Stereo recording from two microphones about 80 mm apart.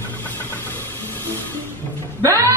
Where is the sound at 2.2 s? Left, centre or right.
Right.